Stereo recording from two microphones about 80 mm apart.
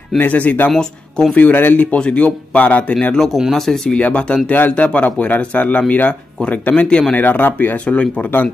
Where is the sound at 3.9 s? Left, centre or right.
Centre.